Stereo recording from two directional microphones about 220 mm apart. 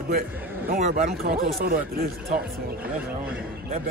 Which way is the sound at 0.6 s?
30° right (ahead or behind).